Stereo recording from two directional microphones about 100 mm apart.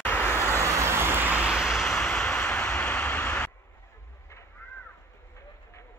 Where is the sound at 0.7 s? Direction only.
25° right (ahead or behind); by 2.2 s 5° left (ahead or behind).